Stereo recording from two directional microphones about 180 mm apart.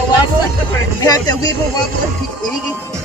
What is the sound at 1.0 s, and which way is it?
Speech, 20° left (ahead or behind).